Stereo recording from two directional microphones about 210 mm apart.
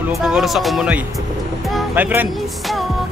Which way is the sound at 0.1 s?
Centre (ahead or behind).